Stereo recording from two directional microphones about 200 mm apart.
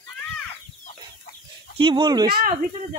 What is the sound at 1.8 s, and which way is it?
Speech, 25° right (ahead or behind).